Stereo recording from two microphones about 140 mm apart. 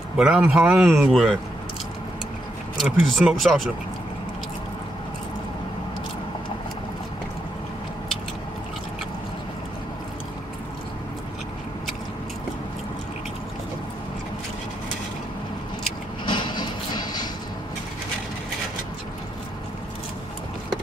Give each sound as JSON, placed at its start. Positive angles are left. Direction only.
{"t": 0.2, "sound": "speech", "side_deg": -10}
{"t": 2.8, "sound": "speech", "side_deg": 0}
{"t": 16.3, "sound": "a sound", "side_deg": 35}